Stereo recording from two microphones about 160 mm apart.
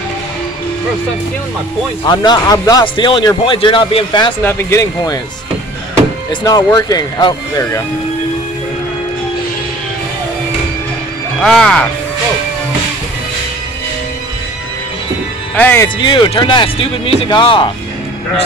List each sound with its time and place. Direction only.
2.0 s speech: 25° left (ahead or behind)
4.4 s speech: 15° left (ahead or behind)
6.4 s speech: 25° left (ahead or behind)
11.4 s speech: 5° left (ahead or behind)
15.5 s speech: 10° left (ahead or behind)
16.0 s speech: 30° left (ahead or behind)